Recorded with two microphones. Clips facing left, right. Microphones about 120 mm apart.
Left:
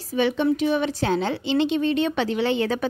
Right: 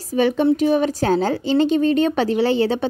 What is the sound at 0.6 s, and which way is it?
A woman's voice, 40° right (ahead or behind).